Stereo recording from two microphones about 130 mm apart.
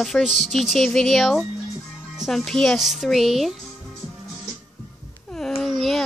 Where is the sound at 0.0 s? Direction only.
Centre (ahead or behind).